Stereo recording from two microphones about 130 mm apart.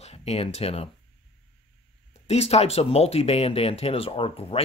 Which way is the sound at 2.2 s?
55° left (ahead or behind).